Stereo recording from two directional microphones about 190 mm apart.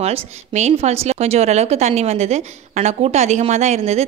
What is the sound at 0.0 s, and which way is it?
A woman's voice, 35° right (ahead or behind).